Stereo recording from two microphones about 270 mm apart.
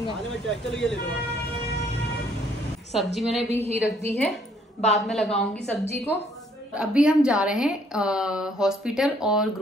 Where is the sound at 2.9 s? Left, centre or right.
Centre.